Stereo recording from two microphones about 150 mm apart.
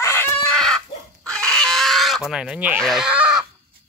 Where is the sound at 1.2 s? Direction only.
5° left (ahead or behind); by 2.8 s 10° right (ahead or behind).